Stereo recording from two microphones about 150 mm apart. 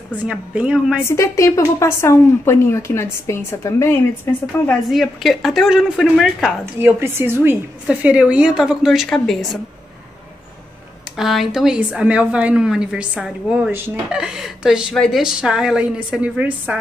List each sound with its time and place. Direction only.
0.3 s a woman's voice: 5° right (ahead or behind)
1.0 s a woman's voice: 20° left (ahead or behind)
4.8 s a woman's voice: centre (ahead or behind)
6.6 s a woman's voice: 15° right (ahead or behind); by 9.6 s centre (ahead or behind)
11.1 s a woman's voice: centre (ahead or behind)
13.7 s a woman's voice: 15° right (ahead or behind)
14.1 s a woman's voice: 5° right (ahead or behind)